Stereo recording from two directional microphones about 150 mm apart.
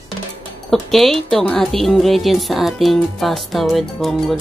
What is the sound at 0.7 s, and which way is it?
A woman's voice, centre (ahead or behind).